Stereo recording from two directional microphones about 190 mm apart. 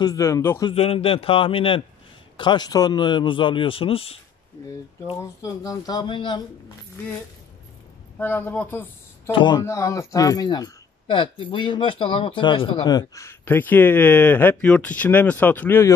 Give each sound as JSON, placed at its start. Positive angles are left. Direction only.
{"t": 0.0, "sound": "speech", "side_deg": 15}
{"t": 0.7, "sound": "a man's voice", "side_deg": 30}
{"t": 5.1, "sound": "a man's voice", "side_deg": 15}
{"t": 8.2, "sound": "speech", "side_deg": 10}
{"t": 9.3, "sound": "speech", "side_deg": 25}